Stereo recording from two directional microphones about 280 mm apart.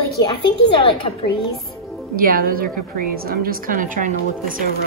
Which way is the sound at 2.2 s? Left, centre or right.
Right.